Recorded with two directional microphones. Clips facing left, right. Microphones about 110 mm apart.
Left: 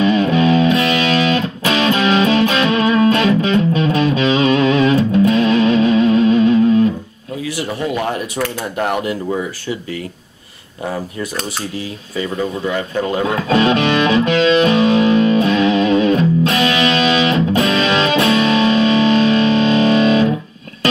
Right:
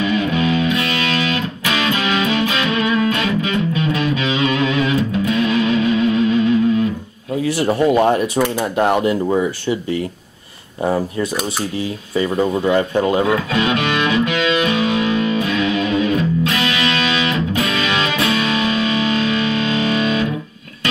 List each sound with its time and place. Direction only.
0.0 s music: 30° left (ahead or behind)
7.4 s speech: 35° right (ahead or behind)
12.2 s speech: 30° right (ahead or behind)
13.3 s music: 30° left (ahead or behind)